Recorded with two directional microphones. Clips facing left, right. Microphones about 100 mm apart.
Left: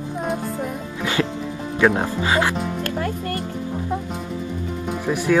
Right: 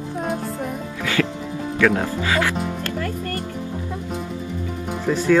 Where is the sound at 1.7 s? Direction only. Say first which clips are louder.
Left 1 dB; 25° left (ahead or behind).